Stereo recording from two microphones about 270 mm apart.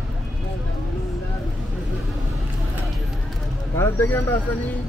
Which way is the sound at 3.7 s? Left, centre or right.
Centre.